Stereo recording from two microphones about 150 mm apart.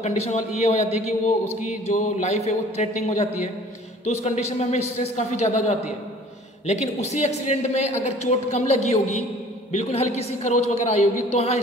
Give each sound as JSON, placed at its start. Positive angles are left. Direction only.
{"t": 0.0, "sound": "a man's voice", "side_deg": 50}